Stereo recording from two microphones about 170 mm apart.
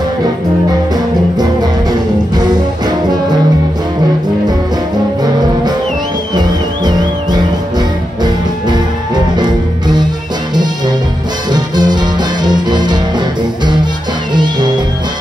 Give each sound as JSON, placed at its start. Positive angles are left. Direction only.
{"t": 1.4, "sound": "music", "side_deg": -25}
{"t": 6.3, "sound": "music", "side_deg": -25}
{"t": 11.5, "sound": "music", "side_deg": -25}
{"t": 14.3, "sound": "music", "side_deg": -25}